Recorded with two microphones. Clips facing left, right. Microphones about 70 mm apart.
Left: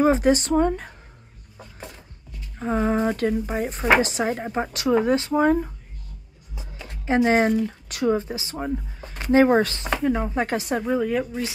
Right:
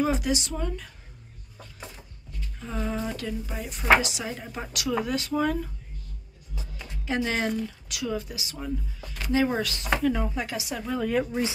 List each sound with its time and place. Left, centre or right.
0.0 s speech: left
2.6 s speech: left
7.1 s speech: left
9.8 s speech: left
10.4 s a woman's voice: left
11.0 s speech: centre